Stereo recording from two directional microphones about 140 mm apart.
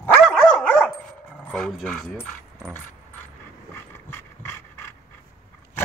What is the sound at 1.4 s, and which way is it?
Speech, 5° left (ahead or behind).